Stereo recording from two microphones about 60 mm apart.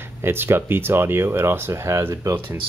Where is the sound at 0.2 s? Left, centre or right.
Right.